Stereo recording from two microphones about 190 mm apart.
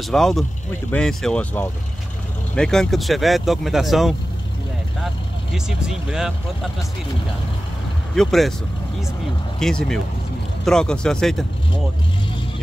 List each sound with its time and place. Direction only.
0.0 s speech: centre (ahead or behind)
8.1 s speech: centre (ahead or behind)
9.6 s speech: 5° left (ahead or behind)